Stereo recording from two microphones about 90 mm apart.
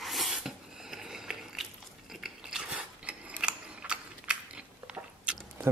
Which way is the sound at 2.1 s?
5° right (ahead or behind).